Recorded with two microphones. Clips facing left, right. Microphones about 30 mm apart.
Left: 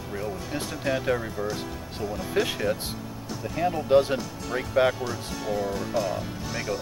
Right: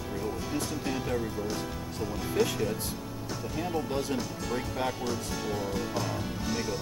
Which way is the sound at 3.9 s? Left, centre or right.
Left.